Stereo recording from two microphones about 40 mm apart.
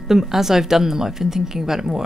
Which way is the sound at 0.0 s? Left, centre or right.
Centre.